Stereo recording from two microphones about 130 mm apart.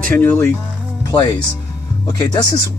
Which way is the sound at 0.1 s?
15° left (ahead or behind).